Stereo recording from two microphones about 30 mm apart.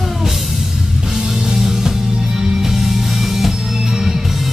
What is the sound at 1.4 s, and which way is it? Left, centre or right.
Music, centre.